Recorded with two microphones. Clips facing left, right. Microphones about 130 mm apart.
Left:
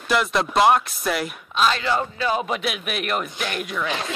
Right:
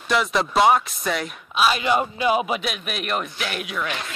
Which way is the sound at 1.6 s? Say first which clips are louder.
Right 1 dB; 15° right (ahead or behind).